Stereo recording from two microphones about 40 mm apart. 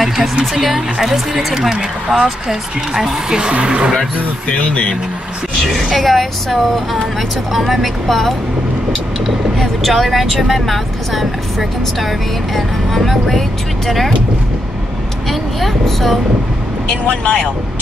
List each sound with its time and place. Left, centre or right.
0.6 s speech: centre; by 4.0 s right
4.5 s speech: left
5.6 s speech: centre
12.5 s speech: centre
15.6 s speech: centre
16.9 s speech: left